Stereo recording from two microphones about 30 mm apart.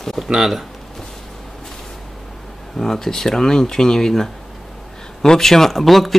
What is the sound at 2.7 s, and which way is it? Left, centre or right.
Speech, centre.